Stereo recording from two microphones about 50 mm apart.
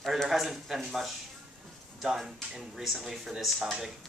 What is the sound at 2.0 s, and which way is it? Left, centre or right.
Speech, centre.